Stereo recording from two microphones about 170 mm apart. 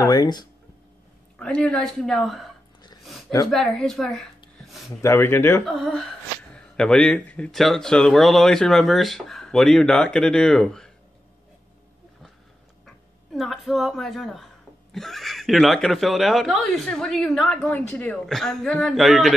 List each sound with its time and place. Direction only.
0.0 s a sound: 25° left (ahead or behind)
1.4 s speech: 5° left (ahead or behind)
3.0 s a sound: centre (ahead or behind)
3.4 s speech: 5° left (ahead or behind)
5.0 s speech: 15° left (ahead or behind)
5.7 s speech: centre (ahead or behind)
12.8 s speech: centre (ahead or behind)